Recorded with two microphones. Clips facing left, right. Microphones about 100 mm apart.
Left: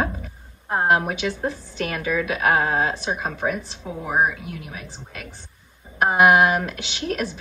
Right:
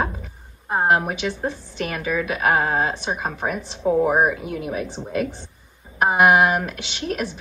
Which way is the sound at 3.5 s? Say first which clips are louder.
Right 12 dB; 55° right (ahead or behind).